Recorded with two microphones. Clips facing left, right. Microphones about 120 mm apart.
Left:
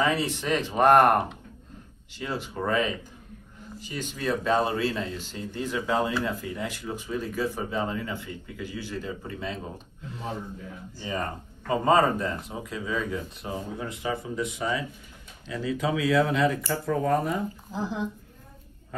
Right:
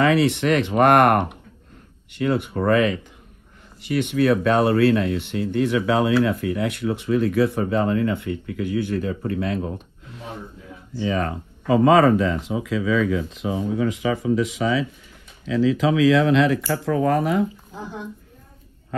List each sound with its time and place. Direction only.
0.0 s speech: 70° right (ahead or behind)
11.0 s speech: 90° right
17.7 s a woman's voice: 90° left